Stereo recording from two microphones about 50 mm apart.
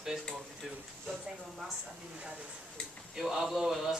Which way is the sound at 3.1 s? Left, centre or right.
Centre.